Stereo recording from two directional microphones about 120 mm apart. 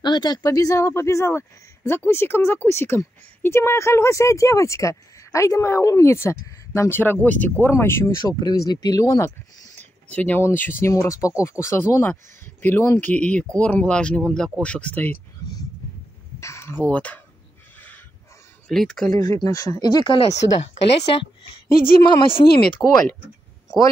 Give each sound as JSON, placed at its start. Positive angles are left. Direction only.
{"t": 0.0, "sound": "a woman's voice", "side_deg": 35}
{"t": 9.8, "sound": "a woman's voice", "side_deg": 15}
{"t": 16.3, "sound": "a sound", "side_deg": 25}
{"t": 16.9, "sound": "speech", "side_deg": 15}
{"t": 17.7, "sound": "dog", "side_deg": 15}
{"t": 18.7, "sound": "speech", "side_deg": 5}
{"t": 19.4, "sound": "speech", "side_deg": 30}
{"t": 20.2, "sound": "speech", "side_deg": 65}
{"t": 22.0, "sound": "speech", "side_deg": 40}
{"t": 22.8, "sound": "speech", "side_deg": 5}